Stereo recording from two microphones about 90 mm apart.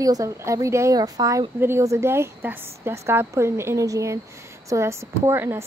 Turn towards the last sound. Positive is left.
turn(degrees=-30)  # may be behind; listen again after turning